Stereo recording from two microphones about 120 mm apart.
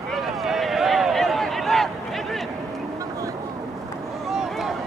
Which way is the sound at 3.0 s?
25° right (ahead or behind).